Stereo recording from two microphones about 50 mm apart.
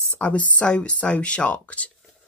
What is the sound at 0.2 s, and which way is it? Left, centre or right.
Speech, left.